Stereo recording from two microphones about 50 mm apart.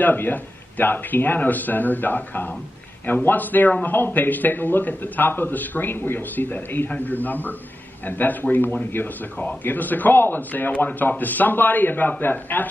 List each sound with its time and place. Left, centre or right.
0.0 s a man's voice: left